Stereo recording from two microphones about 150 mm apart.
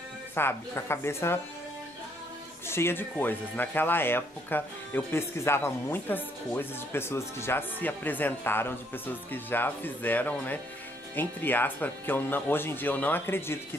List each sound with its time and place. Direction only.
0.3 s speech: 15° left (ahead or behind)
2.7 s speech: 15° left (ahead or behind)